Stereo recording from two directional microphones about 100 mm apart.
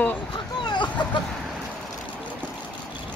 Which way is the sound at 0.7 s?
50° left (ahead or behind).